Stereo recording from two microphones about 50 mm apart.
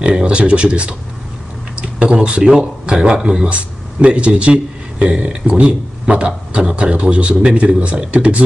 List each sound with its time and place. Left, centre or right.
0.0 s a man's voice: right
3.4 s speech: right